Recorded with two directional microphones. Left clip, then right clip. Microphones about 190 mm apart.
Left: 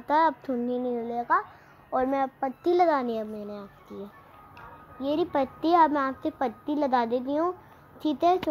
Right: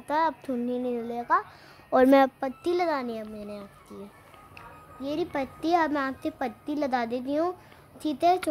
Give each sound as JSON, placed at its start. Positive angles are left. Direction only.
{"t": 0.0, "sound": "a woman's voice", "side_deg": 0}
{"t": 1.9, "sound": "a woman's voice", "side_deg": -45}
{"t": 2.6, "sound": "a child's voice", "side_deg": 5}
{"t": 3.4, "sound": "speech", "side_deg": 0}
{"t": 5.0, "sound": "a child's voice", "side_deg": 10}
{"t": 5.4, "sound": "a child's voice", "side_deg": -25}
{"t": 6.2, "sound": "a woman's voice", "side_deg": 0}
{"t": 7.1, "sound": "a woman's voice", "side_deg": -30}
{"t": 8.0, "sound": "a woman's voice", "side_deg": 0}